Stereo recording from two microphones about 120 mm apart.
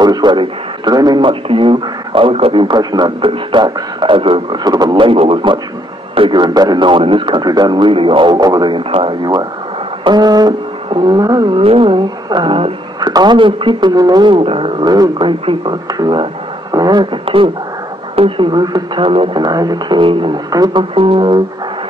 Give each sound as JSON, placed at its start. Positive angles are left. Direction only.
{"t": 0.0, "sound": "a man's voice", "side_deg": -35}
{"t": 10.0, "sound": "a sound", "side_deg": -35}
{"t": 13.0, "sound": "a man's voice", "side_deg": -35}
{"t": 20.9, "sound": "speech", "side_deg": -50}